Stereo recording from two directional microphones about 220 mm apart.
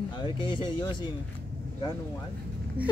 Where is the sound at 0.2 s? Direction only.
20° left (ahead or behind).